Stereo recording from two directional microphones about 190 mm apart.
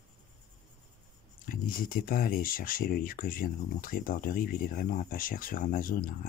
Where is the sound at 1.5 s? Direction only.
50° left (ahead or behind).